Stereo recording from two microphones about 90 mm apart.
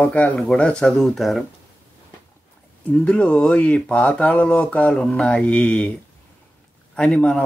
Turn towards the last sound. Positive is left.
turn(degrees=10)  # may be behind; listen again after turning